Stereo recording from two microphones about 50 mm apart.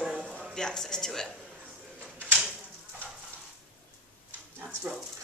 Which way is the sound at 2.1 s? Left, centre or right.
Right.